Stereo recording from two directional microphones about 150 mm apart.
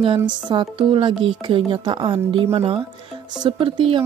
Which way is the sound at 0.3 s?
30° right (ahead or behind).